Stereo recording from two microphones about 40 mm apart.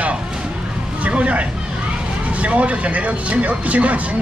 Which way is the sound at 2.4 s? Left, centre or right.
Right.